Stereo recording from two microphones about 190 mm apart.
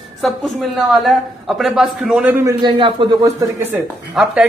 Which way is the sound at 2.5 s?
25° right (ahead or behind).